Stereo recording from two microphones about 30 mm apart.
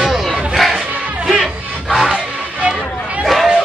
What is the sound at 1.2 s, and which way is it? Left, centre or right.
Music, centre.